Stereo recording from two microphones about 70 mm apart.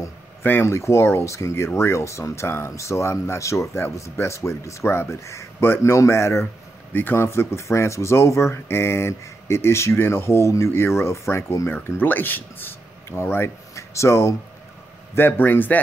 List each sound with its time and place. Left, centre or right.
0.4 s speech: left
0.7 s speech: left
6.9 s a man's voice: left
7.2 s speech: left
12.0 s speech: left
15.1 s a man's voice: left